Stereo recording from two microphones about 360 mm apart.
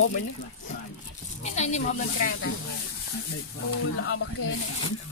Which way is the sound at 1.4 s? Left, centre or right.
Centre.